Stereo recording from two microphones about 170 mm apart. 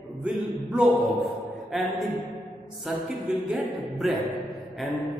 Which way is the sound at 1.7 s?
Centre (ahead or behind).